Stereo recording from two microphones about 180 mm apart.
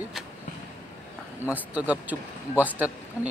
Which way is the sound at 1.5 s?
10° right (ahead or behind).